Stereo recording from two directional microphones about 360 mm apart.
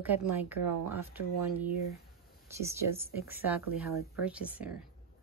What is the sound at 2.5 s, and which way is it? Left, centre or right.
Speech, centre.